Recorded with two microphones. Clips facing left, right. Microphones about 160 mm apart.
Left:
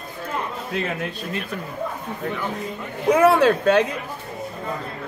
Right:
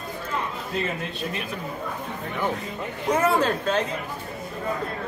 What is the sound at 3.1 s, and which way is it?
Speech, 65° left (ahead or behind).